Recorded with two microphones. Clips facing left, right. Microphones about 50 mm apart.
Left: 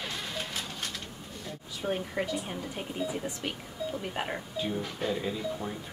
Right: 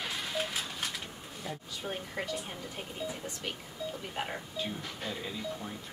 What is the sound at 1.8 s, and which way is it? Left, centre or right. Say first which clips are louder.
Speech: left 7 dB; centre.